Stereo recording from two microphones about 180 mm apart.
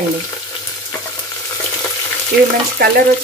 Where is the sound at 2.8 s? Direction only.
60° right (ahead or behind).